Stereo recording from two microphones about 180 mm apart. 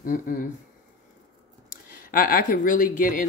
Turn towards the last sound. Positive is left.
turn(degrees=45)  # may be behind; listen again after turning